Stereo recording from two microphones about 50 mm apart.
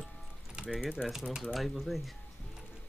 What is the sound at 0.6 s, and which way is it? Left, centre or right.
Mechanisms, centre.